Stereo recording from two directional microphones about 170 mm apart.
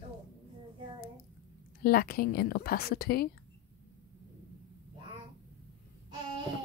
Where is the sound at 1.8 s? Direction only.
60° left (ahead or behind).